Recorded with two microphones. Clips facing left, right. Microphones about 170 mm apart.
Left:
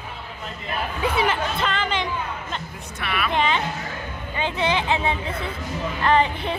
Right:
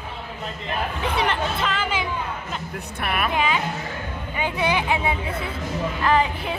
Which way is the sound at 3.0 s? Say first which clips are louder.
Right 1 dB; 50° right (ahead or behind).